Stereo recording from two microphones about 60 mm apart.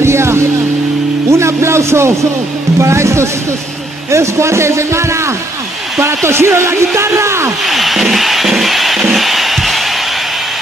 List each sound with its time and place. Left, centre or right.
0.0 s music: right
1.3 s a man's voice: right
7.6 s music: centre